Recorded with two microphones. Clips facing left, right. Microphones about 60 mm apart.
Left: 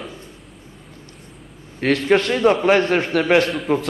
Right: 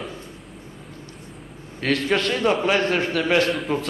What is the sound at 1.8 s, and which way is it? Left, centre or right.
A man's voice, left.